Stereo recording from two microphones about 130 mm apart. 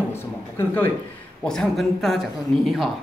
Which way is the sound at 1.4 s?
5° left (ahead or behind).